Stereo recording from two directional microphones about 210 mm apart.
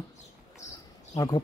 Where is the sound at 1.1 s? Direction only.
15° left (ahead or behind).